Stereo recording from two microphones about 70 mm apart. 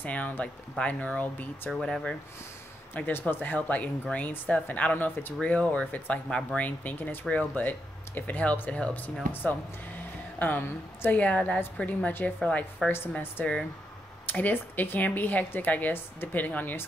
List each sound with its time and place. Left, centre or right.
0.0 s speech: left
1.7 s speech: centre
2.9 s speech: left
12.4 s speech: centre